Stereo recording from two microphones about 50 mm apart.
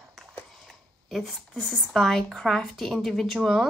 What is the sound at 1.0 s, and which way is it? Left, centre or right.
Speech, centre.